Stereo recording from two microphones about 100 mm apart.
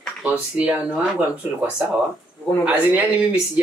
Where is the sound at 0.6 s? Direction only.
10° right (ahead or behind).